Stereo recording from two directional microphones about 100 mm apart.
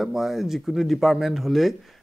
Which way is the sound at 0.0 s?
5° right (ahead or behind).